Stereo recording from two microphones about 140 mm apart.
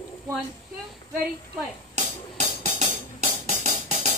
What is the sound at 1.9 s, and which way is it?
Music, 55° right (ahead or behind).